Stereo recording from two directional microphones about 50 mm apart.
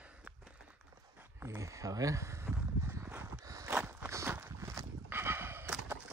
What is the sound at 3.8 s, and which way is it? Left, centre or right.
Walk, right.